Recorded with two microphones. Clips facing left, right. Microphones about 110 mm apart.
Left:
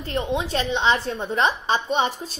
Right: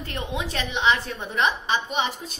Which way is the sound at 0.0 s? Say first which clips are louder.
Left 5 dB; 30° left (ahead or behind).